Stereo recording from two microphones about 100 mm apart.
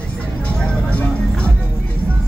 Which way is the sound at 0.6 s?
15° left (ahead or behind).